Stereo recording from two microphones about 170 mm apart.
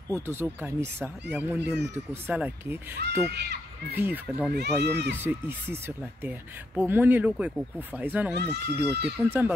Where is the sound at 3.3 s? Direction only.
75° right (ahead or behind).